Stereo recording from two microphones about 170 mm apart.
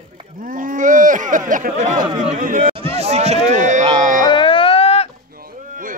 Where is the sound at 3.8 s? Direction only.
25° right (ahead or behind).